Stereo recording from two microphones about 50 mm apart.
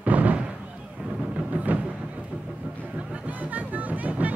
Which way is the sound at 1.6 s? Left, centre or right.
Right.